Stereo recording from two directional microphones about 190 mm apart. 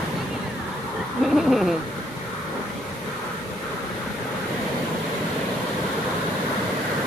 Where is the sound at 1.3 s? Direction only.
Centre (ahead or behind).